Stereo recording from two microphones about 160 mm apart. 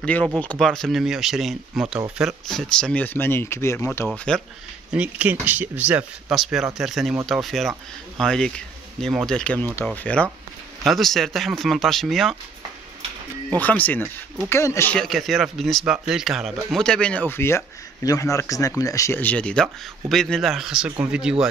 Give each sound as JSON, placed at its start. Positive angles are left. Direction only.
{"t": 0.0, "sound": "speech", "side_deg": 5}
{"t": 4.1, "sound": "speech", "side_deg": 5}
{"t": 4.9, "sound": "speech", "side_deg": -10}
{"t": 13.6, "sound": "speech", "side_deg": 10}
{"t": 15.0, "sound": "speech", "side_deg": 0}